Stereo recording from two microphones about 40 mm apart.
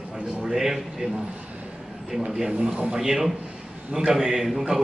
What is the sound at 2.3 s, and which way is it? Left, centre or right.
A man's voice, centre.